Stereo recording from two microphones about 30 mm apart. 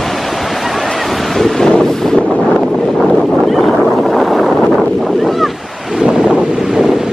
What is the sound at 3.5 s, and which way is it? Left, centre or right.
Boat, centre.